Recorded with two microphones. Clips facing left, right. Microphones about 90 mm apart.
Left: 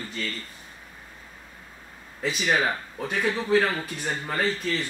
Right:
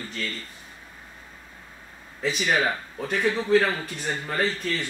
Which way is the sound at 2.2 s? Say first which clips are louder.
Even; 5° left (ahead or behind).